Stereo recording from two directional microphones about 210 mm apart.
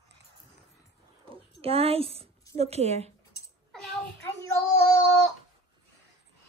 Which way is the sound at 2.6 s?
30° right (ahead or behind).